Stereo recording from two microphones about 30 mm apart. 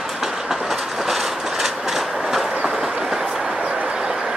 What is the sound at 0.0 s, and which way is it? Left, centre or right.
Train, centre.